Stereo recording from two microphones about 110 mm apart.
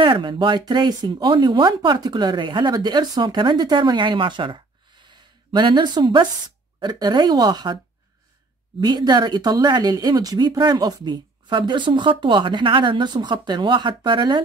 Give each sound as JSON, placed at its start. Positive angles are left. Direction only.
{"t": 0.0, "sound": "a woman's voice", "side_deg": -45}
{"t": 8.8, "sound": "speech", "side_deg": -40}